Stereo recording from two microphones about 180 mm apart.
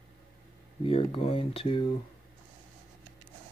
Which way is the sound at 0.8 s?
30° left (ahead or behind).